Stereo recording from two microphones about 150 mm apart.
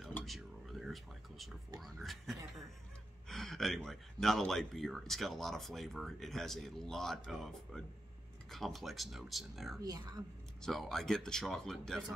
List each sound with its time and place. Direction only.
0.2 s a sound: centre (ahead or behind)
1.8 s speech: centre (ahead or behind)
9.8 s speech: 25° right (ahead or behind)
10.6 s speech: centre (ahead or behind)